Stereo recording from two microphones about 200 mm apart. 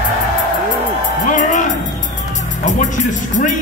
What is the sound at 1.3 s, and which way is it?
Music, 40° left (ahead or behind).